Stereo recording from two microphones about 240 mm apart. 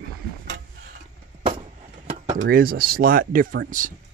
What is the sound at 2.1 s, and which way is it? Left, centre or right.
Speech, right.